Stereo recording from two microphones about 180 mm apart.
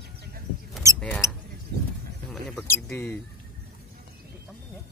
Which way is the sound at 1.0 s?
10° left (ahead or behind).